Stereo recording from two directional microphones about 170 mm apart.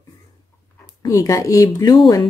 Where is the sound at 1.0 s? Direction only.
20° left (ahead or behind).